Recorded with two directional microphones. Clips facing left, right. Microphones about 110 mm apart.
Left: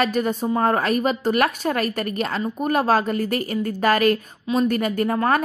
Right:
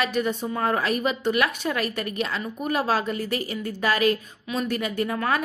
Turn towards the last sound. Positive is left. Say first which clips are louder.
# left 5 dB
turn(degrees=40)  # may be behind; listen again after turning